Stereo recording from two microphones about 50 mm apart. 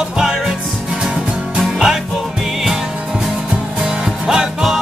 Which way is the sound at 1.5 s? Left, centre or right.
Centre.